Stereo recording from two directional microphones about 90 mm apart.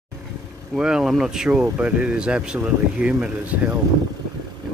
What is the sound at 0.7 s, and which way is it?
Speech, 10° right (ahead or behind).